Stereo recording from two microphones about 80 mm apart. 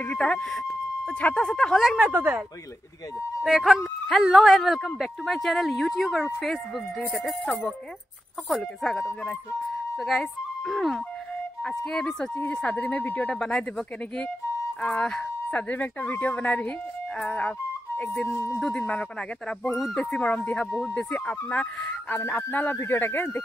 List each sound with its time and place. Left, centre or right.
0.0 s speech: centre
2.0 s a woman's voice: right
3.4 s speech: centre
8.5 s speech: centre
20.2 s speech: centre